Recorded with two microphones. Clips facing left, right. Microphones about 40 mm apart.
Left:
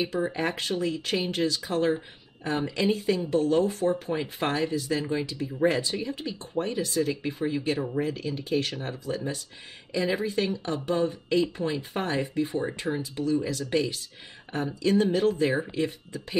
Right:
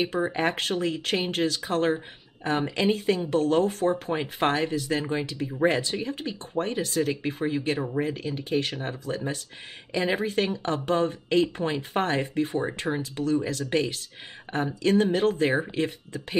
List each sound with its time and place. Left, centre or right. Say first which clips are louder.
0.3 s speech: right 3 dB; right
3.8 s speech: right 1 dB; right
12.9 s speech: even; right
13.4 s speech: right 1 dB; right